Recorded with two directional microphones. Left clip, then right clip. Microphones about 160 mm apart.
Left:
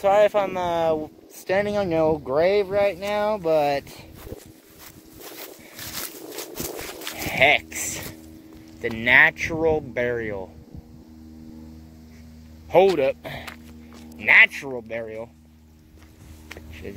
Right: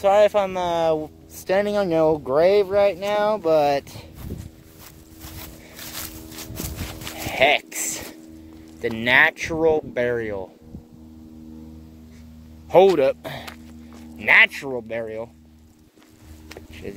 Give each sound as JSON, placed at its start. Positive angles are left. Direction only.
{"t": 0.0, "sound": "speech", "side_deg": 0}
{"t": 1.5, "sound": "speech", "side_deg": -10}
{"t": 5.8, "sound": "a sound", "side_deg": 0}
{"t": 7.2, "sound": "dog", "side_deg": -15}
{"t": 8.8, "sound": "speech", "side_deg": -20}
{"t": 12.6, "sound": "speech", "side_deg": -20}
{"t": 13.5, "sound": "a sound", "side_deg": -15}